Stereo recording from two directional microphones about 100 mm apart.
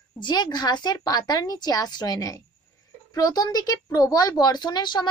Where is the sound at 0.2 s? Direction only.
45° left (ahead or behind).